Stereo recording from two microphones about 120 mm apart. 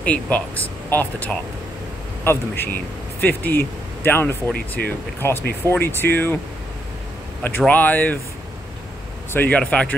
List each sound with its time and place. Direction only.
0.0 s speech: 10° left (ahead or behind)
7.4 s speech: 15° left (ahead or behind)
9.3 s speech: 15° left (ahead or behind)